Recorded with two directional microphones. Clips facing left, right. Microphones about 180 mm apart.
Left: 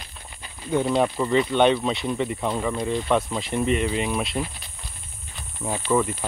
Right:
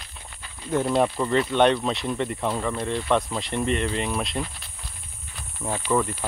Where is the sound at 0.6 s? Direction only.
Centre (ahead or behind).